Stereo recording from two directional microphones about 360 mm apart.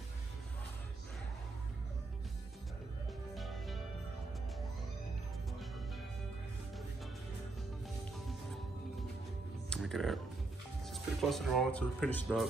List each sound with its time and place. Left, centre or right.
3.3 s music: centre
9.7 s music: centre
10.9 s speech: centre